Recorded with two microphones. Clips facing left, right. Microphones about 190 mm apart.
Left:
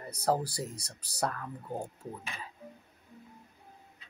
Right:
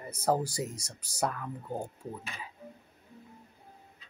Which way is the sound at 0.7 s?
60° left (ahead or behind).